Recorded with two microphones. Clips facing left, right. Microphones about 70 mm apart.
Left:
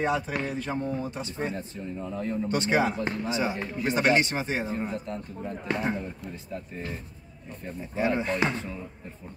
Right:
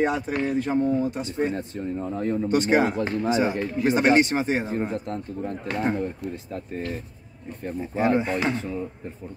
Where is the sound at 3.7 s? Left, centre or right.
Right.